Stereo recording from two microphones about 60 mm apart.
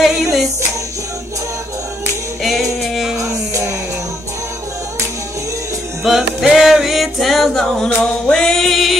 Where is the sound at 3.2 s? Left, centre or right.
Right.